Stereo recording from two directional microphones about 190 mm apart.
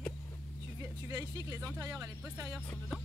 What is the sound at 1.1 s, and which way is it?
Speech, 15° right (ahead or behind).